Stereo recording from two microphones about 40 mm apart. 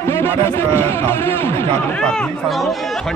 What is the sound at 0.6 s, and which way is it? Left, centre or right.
A man's voice, left.